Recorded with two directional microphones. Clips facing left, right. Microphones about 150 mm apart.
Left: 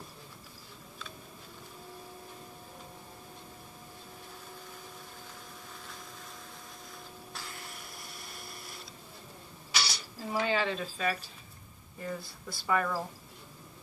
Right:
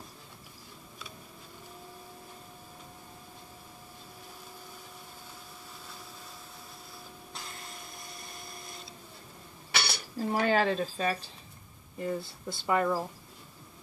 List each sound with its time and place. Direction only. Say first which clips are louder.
9.7 s speech: right 2 dB; 55° right (ahead or behind); by 13.0 s 25° right (ahead or behind)